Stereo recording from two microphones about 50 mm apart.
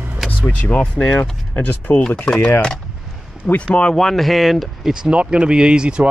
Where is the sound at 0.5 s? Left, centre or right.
Left.